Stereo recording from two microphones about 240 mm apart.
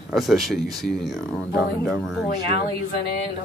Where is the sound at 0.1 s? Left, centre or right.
Centre.